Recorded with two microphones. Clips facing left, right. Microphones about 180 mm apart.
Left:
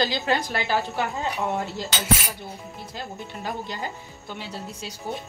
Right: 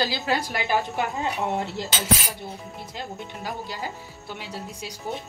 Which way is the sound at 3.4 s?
10° right (ahead or behind).